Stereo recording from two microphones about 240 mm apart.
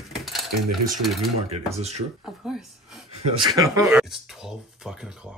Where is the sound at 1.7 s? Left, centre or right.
Right.